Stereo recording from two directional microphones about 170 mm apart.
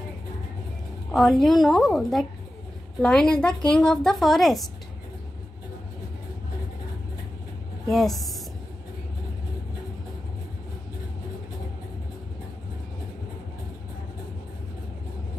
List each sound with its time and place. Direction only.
1.1 s a woman's voice: centre (ahead or behind)
7.9 s a woman's voice: centre (ahead or behind)